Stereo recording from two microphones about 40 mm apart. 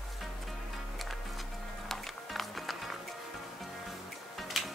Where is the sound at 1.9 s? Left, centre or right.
Centre.